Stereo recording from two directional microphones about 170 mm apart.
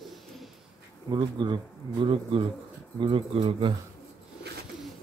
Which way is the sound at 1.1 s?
25° right (ahead or behind).